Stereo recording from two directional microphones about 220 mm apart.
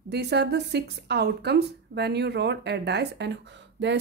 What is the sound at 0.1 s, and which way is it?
Speech, 50° right (ahead or behind).